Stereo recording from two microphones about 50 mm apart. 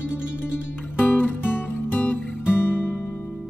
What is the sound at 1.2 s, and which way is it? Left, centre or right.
Music, left.